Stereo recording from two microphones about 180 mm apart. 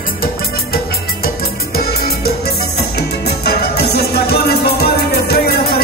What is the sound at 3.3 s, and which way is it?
Music, 65° left (ahead or behind).